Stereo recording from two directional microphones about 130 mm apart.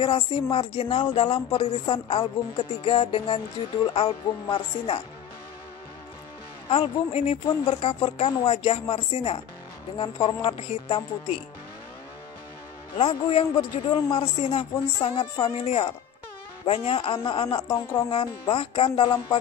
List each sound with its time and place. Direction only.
0.0 s a man's voice: 40° left (ahead or behind)
6.7 s a man's voice: 55° left (ahead or behind)
7.4 s a man's voice: 45° left (ahead or behind)
12.9 s a man's voice: 45° left (ahead or behind)